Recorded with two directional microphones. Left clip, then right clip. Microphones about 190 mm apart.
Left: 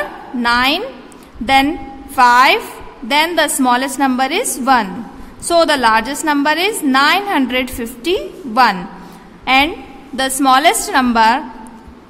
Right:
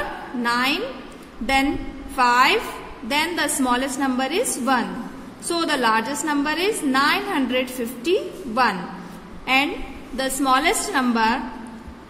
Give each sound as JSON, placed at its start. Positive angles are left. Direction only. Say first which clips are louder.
{"t": 0.4, "sound": "a woman's voice", "louder": "left 8 dB", "side_deg": 30}